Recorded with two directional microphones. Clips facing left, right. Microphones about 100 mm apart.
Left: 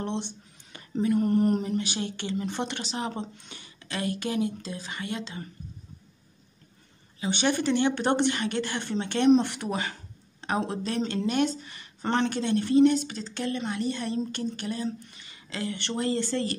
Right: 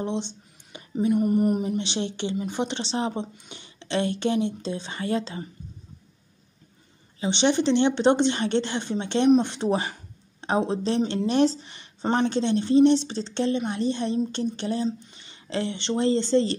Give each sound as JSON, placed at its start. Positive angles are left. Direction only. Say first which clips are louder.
{"t": 0.0, "sound": "speech", "louder": "right 3 dB", "side_deg": -20}
{"t": 1.8, "sound": "a woman's voice", "louder": "right 3 dB", "side_deg": -25}
{"t": 2.8, "sound": "a woman's voice", "louder": "right 5 dB", "side_deg": -30}
{"t": 3.1, "sound": "a woman's voice", "louder": "right 4 dB", "side_deg": -20}
{"t": 7.2, "sound": "a woman's voice", "louder": "right 4 dB", "side_deg": -25}
{"t": 11.2, "sound": "a woman's voice", "louder": "right 6 dB", "side_deg": -30}